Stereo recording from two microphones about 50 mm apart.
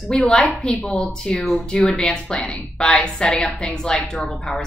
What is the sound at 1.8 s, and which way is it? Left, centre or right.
Speech, centre.